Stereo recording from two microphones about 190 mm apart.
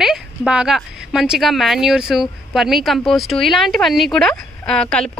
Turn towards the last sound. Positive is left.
turn(degrees=5)  # may be behind; listen again after turning